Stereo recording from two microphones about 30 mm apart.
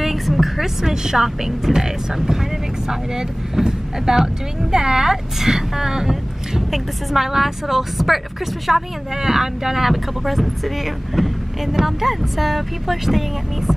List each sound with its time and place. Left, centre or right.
0.0 s a woman's voice: centre
2.9 s speech: centre
6.7 s speech: centre
11.2 s vehicle: centre
11.7 s speech: centre